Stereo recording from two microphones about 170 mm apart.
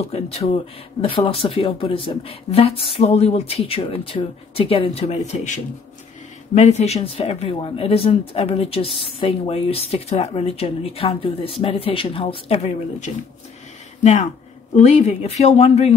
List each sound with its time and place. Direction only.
0.1 s speech: 35° left (ahead or behind)
14.8 s speech: 40° left (ahead or behind)